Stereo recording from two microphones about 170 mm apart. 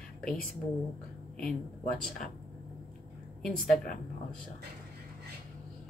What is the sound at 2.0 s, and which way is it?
Speech, 5° left (ahead or behind).